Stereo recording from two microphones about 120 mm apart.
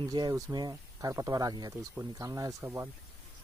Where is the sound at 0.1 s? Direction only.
30° right (ahead or behind).